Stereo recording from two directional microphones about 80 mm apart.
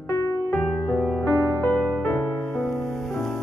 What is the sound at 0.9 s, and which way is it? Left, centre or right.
Music, left.